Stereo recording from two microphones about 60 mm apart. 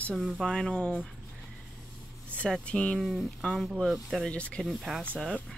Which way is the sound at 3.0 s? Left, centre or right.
Centre.